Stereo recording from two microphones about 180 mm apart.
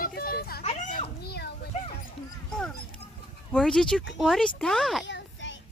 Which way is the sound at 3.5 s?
5° left (ahead or behind).